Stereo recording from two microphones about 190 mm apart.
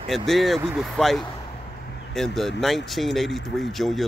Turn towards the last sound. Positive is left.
turn(degrees=0)  # may be behind; listen again after turning